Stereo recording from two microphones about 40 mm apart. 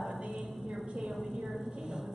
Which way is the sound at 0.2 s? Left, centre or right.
Centre.